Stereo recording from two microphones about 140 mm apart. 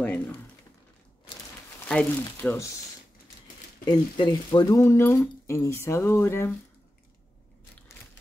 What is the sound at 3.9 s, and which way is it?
Speech, 35° left (ahead or behind).